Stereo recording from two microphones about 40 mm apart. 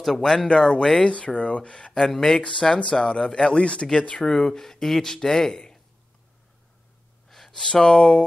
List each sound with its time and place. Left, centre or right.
0.0 s speech: centre
0.5 s speech: centre
1.0 s speech: left
3.6 s speech: left
3.9 s speech: centre
7.2 s gasp: centre
7.6 s speech: centre